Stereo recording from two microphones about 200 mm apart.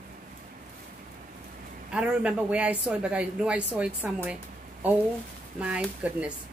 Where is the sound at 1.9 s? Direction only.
5° right (ahead or behind).